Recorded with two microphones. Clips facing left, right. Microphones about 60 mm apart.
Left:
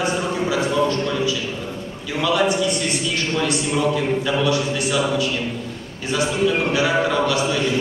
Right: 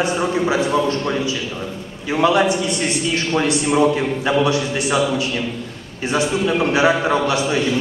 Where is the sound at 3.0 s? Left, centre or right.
Right.